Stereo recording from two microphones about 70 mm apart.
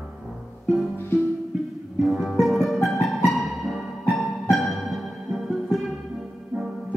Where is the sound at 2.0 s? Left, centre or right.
Centre.